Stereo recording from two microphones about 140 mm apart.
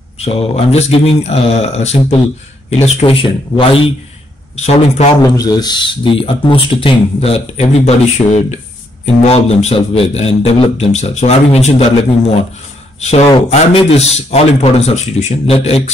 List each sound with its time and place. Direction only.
0.2 s a man's voice: 45° left (ahead or behind)
2.8 s a man's voice: 40° left (ahead or behind)
4.6 s a man's voice: 50° left (ahead or behind)
5.2 s a man's voice: 25° left (ahead or behind); by 15.8 s 45° left (ahead or behind)